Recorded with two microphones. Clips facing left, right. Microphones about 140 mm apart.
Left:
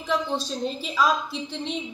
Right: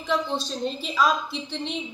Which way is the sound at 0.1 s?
5° left (ahead or behind).